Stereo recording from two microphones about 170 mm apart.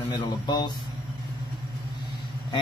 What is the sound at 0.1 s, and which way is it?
Speech, 25° left (ahead or behind).